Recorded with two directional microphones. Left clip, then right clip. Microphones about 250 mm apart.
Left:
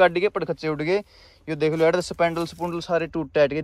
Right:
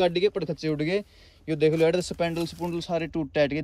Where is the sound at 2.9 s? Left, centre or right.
Left.